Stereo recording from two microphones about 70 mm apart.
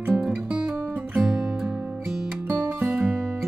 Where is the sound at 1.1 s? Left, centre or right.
Centre.